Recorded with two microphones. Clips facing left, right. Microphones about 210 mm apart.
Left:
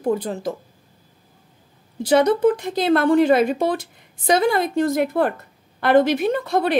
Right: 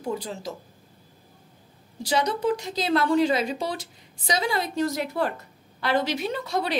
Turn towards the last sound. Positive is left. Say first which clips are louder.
# left 7 dB
turn(degrees=55)  # may be behind; listen again after turning